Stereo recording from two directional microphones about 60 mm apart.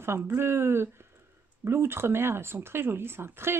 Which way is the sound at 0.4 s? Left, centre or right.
Right.